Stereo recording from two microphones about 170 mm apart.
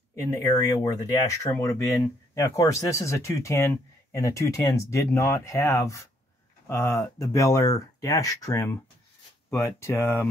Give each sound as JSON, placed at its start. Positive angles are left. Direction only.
{"t": 0.1, "sound": "speech", "side_deg": 15}